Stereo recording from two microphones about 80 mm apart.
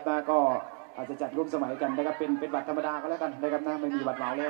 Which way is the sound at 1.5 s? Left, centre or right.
Centre.